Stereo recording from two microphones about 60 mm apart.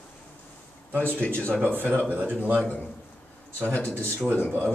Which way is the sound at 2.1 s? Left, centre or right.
Right.